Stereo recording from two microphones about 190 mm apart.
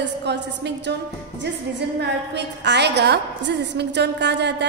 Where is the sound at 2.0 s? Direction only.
65° right (ahead or behind).